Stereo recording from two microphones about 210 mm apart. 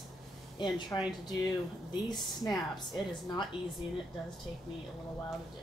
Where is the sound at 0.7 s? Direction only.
20° left (ahead or behind).